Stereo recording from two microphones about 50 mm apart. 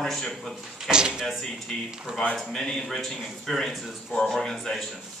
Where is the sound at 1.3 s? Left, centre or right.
Centre.